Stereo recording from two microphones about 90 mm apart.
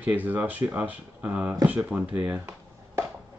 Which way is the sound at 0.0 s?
20° right (ahead or behind).